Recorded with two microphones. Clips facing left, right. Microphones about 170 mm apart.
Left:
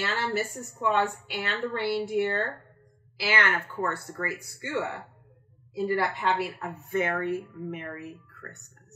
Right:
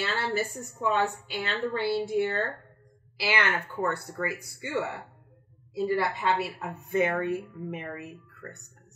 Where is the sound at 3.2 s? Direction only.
10° right (ahead or behind).